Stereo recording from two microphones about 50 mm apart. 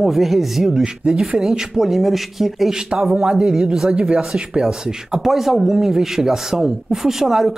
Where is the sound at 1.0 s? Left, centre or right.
Centre.